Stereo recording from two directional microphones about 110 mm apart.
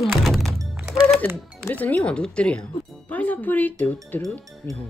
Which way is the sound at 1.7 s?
15° left (ahead or behind).